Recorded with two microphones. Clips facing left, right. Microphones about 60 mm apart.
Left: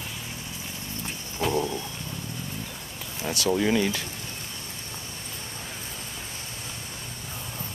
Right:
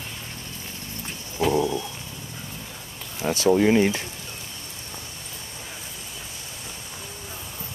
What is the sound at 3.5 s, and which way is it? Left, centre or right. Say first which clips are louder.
Speech: right 5 dB; right.